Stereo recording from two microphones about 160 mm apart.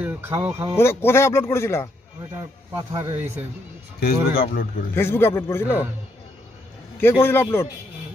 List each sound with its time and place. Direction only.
0.0 s speech: 10° right (ahead or behind)
0.7 s speech: 15° left (ahead or behind)
2.3 s speech: 20° right (ahead or behind)
4.0 s speech: 70° left (ahead or behind)
4.9 s speech: 15° left (ahead or behind)
7.0 s speech: 15° left (ahead or behind)